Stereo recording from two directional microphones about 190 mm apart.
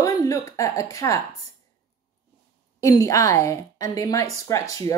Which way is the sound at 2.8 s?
15° left (ahead or behind).